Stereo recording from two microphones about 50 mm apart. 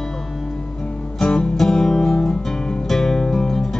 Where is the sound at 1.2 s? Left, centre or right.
Centre.